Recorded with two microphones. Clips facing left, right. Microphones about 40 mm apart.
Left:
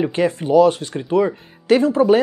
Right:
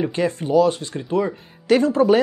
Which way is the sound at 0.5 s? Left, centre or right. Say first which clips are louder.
Left 4 dB; left.